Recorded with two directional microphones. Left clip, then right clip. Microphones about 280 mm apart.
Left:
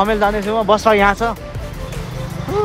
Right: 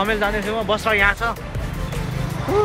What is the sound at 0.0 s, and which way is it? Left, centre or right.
Speech, left.